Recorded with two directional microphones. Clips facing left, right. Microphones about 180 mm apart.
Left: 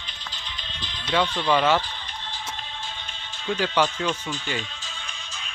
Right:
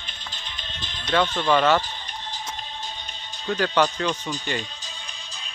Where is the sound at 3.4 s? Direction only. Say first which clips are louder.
Right 1 dB; 10° left (ahead or behind).